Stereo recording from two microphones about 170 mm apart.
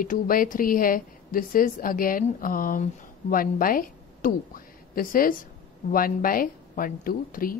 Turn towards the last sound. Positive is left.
turn(degrees=55)  # may be behind; listen again after turning